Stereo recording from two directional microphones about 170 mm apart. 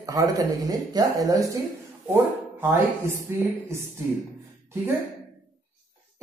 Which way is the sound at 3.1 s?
15° right (ahead or behind).